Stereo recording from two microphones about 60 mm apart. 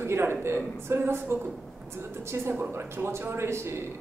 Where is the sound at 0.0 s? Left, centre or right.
Right.